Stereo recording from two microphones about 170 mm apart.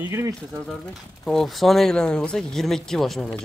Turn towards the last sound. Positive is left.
turn(degrees=0)  # may be behind; listen again after turning